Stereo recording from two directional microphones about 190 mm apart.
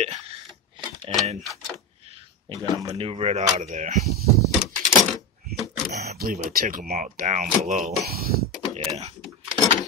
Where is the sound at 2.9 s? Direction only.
30° right (ahead or behind).